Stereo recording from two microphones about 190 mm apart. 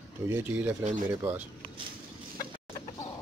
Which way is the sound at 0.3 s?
10° right (ahead or behind).